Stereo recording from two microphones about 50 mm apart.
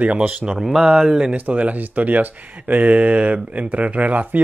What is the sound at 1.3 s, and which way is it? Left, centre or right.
Speech, right.